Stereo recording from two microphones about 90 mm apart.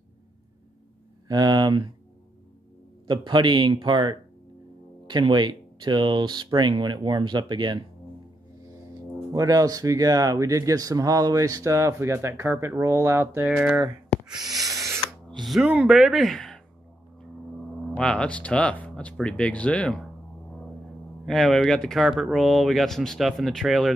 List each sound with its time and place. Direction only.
1.2 s speech: 50° right (ahead or behind)
3.1 s speech: 60° right (ahead or behind)
9.3 s speech: 45° right (ahead or behind)
13.6 s speech: 15° right (ahead or behind)
14.3 s snort: 45° right (ahead or behind)
15.6 s speech: 15° right (ahead or behind)
16.2 s speech: 5° left (ahead or behind)
17.9 s speech: 10° left (ahead or behind)
21.3 s speech: centre (ahead or behind)